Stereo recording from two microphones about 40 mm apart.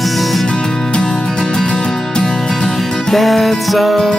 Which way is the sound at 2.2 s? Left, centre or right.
Centre.